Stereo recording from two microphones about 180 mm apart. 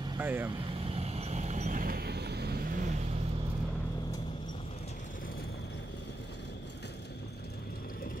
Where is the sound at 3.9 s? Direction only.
20° left (ahead or behind).